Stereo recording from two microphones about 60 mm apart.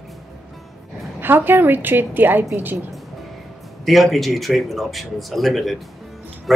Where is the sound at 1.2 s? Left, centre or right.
Right.